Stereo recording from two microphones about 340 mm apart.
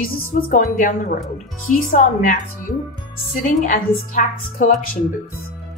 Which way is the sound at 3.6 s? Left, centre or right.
Left.